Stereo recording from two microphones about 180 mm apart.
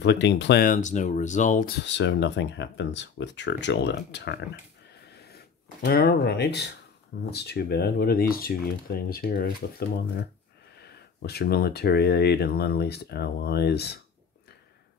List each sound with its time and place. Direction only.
0.0 s speech: 75° left (ahead or behind)
0.7 s speech: 45° left (ahead or behind); by 4.5 s 70° left (ahead or behind)
5.9 s speech: 60° left (ahead or behind)